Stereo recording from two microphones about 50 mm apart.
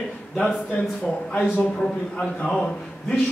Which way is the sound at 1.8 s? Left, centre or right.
Centre.